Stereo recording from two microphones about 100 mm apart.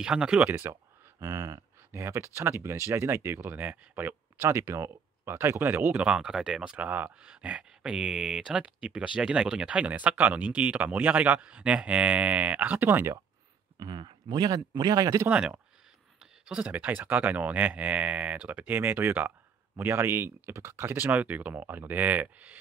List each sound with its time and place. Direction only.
0.0 s speech: 10° right (ahead or behind)
1.2 s a sound: 35° right (ahead or behind)
1.9 s speech: 25° right (ahead or behind)
6.0 s speech: 10° right (ahead or behind)
13.7 s speech: 50° right (ahead or behind)
15.2 s speech: 15° right (ahead or behind)